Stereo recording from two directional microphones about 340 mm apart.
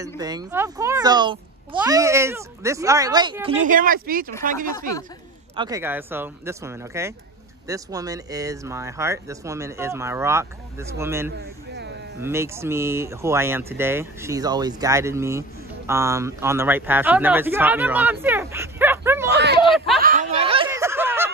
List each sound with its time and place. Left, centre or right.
0.2 s speech: centre
5.6 s speech: centre
11.7 s a sound: right
12.2 s speech: centre
19.3 s a sound: right
20.0 s snicker: right; by 21.3 s centre